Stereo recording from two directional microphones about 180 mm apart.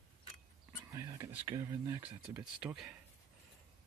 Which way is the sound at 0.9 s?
15° right (ahead or behind).